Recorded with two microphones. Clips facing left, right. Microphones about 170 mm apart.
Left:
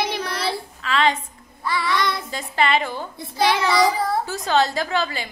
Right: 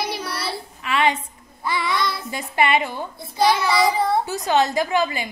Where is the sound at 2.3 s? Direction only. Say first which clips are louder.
Right 2 dB; 20° right (ahead or behind).